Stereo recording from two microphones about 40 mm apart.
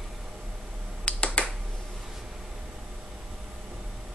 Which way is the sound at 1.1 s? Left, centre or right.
Left.